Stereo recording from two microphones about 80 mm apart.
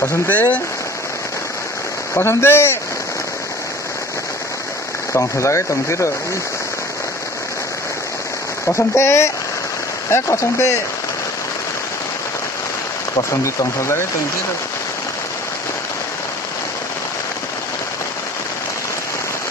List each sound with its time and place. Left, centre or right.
0.3 s speech: left
2.1 s speech: left
5.1 s speech: left
8.7 s speech: left
13.3 s speech: left